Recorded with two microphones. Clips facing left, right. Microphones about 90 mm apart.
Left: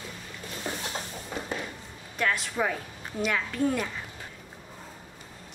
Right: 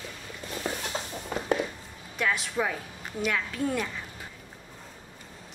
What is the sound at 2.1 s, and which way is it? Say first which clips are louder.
A woman's voice: even; centre (ahead or behind).